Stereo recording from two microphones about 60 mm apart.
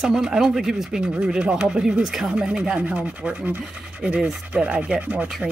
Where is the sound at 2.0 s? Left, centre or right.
Centre.